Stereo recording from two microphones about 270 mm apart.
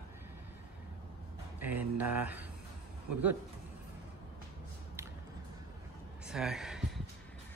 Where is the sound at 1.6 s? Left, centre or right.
Centre.